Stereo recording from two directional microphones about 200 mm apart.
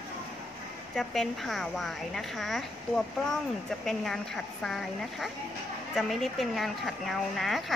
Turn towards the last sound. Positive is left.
turn(degrees=0)  # may be behind; listen again after turning